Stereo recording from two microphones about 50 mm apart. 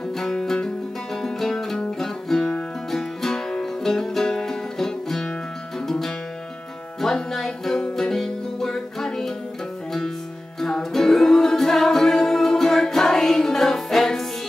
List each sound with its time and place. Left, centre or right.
0.2 s music: centre
1.2 s music: centre
10.6 s music: centre